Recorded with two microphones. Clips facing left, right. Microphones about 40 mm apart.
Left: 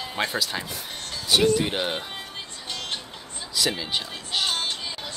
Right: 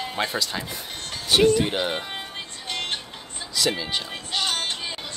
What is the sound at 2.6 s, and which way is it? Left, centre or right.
Music, right.